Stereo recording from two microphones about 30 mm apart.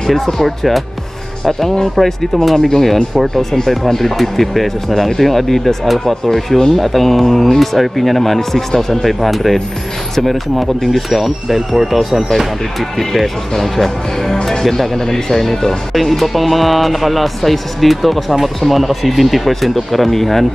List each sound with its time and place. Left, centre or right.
0.0 s speech: centre
2.0 s speech: centre
10.8 s speech: centre